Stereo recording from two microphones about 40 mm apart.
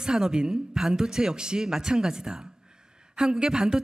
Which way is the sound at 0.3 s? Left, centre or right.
Centre.